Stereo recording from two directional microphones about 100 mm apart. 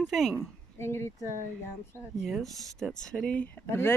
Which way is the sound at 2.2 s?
Centre (ahead or behind).